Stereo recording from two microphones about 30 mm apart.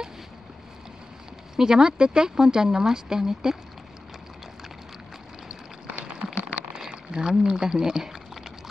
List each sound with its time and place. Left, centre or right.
1.6 s speech: right
6.2 s a sound: right
6.9 s speech: right